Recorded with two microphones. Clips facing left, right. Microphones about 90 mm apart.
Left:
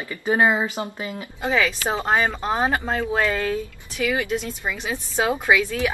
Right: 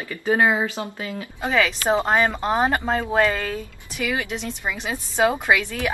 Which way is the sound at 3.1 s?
20° right (ahead or behind).